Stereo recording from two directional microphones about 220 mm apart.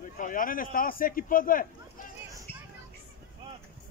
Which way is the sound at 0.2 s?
40° left (ahead or behind).